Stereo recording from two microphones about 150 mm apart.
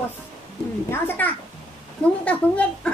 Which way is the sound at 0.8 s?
15° left (ahead or behind).